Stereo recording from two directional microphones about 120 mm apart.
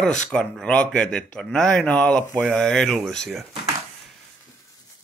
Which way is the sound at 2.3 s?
20° right (ahead or behind).